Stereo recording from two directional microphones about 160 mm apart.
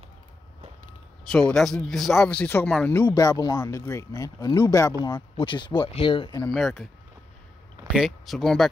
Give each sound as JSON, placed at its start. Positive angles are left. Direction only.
{"t": 1.3, "sound": "speech", "side_deg": 5}
{"t": 3.2, "sound": "speech", "side_deg": 20}
{"t": 6.5, "sound": "speech", "side_deg": 0}
{"t": 7.9, "sound": "speech", "side_deg": 0}